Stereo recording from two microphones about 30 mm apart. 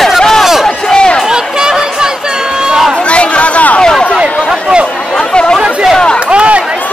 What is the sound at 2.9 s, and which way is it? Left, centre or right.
Chatter, left.